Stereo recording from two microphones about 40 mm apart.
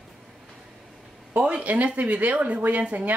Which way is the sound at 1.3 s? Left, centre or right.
Right.